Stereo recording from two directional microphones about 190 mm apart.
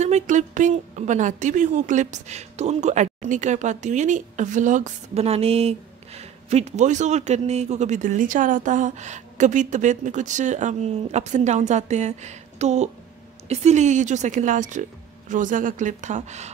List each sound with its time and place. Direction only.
0.0 s a woman's voice: 40° right (ahead or behind)